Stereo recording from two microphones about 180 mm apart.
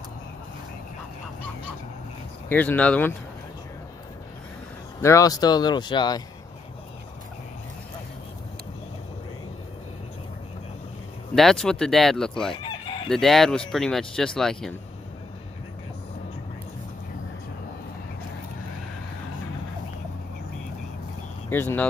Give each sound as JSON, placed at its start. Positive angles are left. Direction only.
{"t": 2.5, "sound": "speech", "side_deg": 10}
{"t": 5.0, "sound": "speech", "side_deg": 20}
{"t": 11.3, "sound": "speech", "side_deg": 0}
{"t": 21.5, "sound": "speech", "side_deg": 10}